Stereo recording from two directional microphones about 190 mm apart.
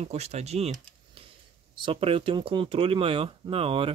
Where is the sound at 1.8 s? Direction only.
30° right (ahead or behind).